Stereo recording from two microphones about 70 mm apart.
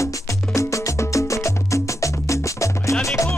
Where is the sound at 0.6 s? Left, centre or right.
Left.